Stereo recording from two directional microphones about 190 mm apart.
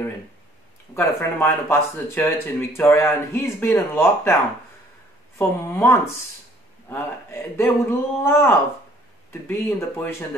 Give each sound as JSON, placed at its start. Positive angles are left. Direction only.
{"t": 0.9, "sound": "speech", "side_deg": 10}
{"t": 5.4, "sound": "speech", "side_deg": 10}